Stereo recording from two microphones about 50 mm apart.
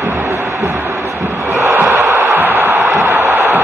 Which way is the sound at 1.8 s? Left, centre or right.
Right.